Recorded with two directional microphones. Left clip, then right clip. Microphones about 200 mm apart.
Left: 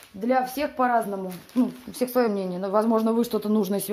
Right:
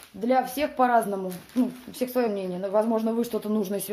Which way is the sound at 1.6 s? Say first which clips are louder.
Left 2 dB; 30° left (ahead or behind).